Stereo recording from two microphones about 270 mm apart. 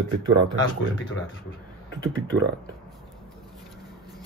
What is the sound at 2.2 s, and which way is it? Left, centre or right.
Speech, right.